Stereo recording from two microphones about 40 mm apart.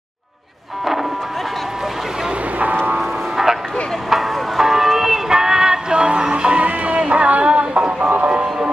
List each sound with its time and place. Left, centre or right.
3.0 s music: centre; by 6.6 s right
6.6 s music: right
8.3 s a sound: right